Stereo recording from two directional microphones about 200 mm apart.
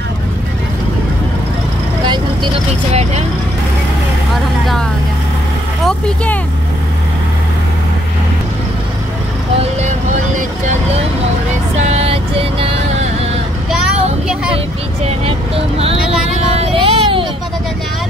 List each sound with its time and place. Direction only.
2.0 s vehicle: 25° right (ahead or behind)
5.9 s vehicle: 5° left (ahead or behind)
11.7 s vehicle: 35° right (ahead or behind)
15.8 s vehicle: 30° right (ahead or behind)